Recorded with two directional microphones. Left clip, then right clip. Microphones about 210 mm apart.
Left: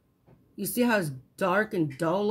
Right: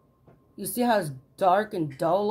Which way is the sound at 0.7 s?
30° left (ahead or behind).